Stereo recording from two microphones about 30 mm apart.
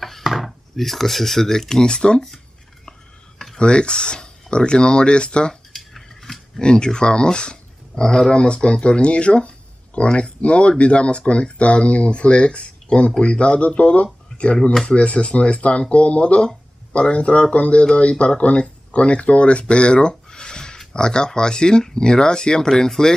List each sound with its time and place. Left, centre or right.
0.2 s speech: centre; by 2.2 s left
3.5 s speech: left
5.7 s a sound: centre
6.6 s speech: left
8.3 s speech: left
14.0 s speech: left
19.7 s a sound: left
20.9 s speech: left
22.7 s speech: centre